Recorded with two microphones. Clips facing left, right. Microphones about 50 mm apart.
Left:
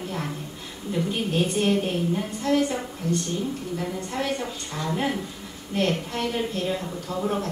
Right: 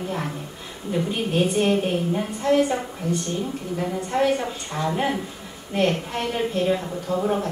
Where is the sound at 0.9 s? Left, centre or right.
Right.